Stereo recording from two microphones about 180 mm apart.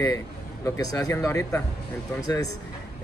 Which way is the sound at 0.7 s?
20° left (ahead or behind).